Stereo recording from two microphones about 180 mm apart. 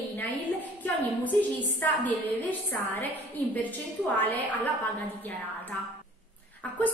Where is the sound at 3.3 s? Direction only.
10° left (ahead or behind).